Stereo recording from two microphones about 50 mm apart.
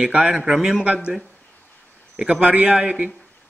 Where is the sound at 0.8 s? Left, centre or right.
Centre.